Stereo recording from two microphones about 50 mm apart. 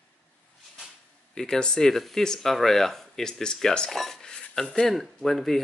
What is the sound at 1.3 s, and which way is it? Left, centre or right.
Speech, centre.